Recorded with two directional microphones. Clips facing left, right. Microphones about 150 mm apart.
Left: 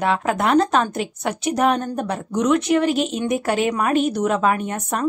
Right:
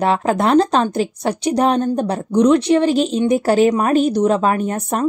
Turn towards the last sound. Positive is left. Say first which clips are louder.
# right 4 dB
turn(degrees=-35)  # may be behind; listen again after turning